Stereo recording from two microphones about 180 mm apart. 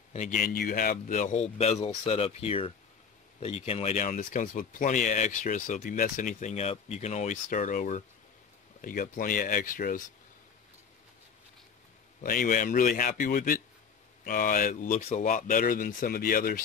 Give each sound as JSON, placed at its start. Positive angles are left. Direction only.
{"t": 0.1, "sound": "a man's voice", "side_deg": 45}
{"t": 12.2, "sound": "speech", "side_deg": 50}